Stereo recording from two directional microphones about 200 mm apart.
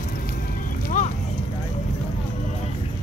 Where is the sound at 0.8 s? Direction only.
40° left (ahead or behind).